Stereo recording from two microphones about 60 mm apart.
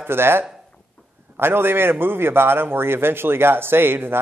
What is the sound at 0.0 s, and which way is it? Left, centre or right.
Speech, right.